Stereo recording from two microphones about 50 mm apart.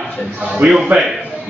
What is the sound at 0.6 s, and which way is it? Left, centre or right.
Speech, right.